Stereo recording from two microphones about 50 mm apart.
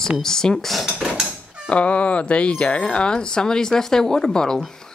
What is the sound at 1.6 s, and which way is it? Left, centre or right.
Speech, left.